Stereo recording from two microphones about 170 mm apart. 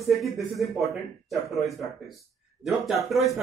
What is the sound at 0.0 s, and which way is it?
Speech, centre (ahead or behind).